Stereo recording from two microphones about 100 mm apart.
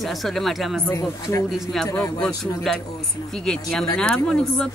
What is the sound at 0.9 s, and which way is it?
Speech, 35° left (ahead or behind).